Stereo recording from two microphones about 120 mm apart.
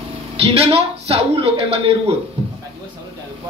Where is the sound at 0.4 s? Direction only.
50° right (ahead or behind).